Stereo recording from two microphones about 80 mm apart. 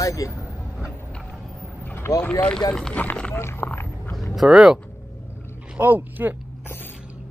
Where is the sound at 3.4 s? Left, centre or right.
Left.